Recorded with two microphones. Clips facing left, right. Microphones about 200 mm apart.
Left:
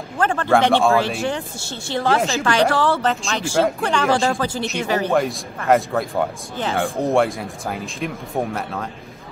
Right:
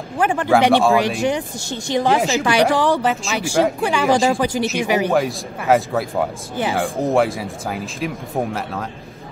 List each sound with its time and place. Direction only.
0.2 s speech: 10° right (ahead or behind)
5.7 s speech: centre (ahead or behind)